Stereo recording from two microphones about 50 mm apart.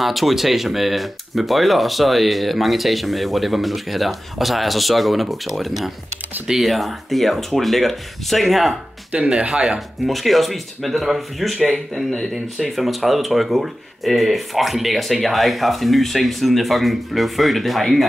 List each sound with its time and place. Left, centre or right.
0.0 s speech: centre
9.1 s speech: right
10.0 s speech: centre